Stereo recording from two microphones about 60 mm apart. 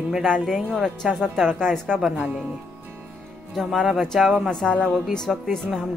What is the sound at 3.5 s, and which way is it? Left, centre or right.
Speech, centre.